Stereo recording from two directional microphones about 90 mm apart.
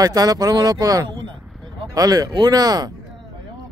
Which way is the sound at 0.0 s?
45° right (ahead or behind).